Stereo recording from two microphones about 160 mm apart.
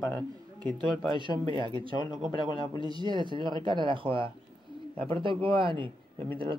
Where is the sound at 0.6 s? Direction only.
30° right (ahead or behind).